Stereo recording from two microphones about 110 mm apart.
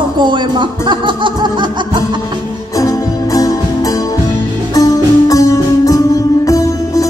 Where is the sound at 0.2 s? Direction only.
45° right (ahead or behind).